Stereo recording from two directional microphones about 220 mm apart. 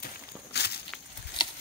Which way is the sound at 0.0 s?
50° left (ahead or behind).